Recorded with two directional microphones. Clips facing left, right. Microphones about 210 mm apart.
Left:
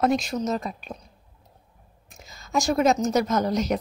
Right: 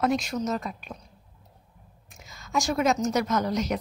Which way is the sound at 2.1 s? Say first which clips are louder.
Left 2 dB; 30° left (ahead or behind).